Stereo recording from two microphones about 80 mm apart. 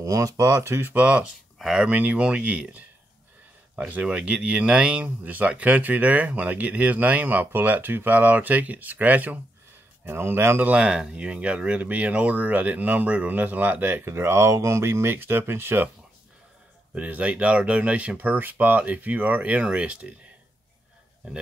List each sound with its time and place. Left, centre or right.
0.0 s speech: right
0.9 s speech: centre
1.9 s speech: centre
10.7 s speech: centre
14.0 s speech: right
16.9 s speech: centre